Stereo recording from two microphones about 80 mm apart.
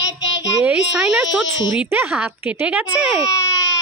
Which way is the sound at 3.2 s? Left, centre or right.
Left.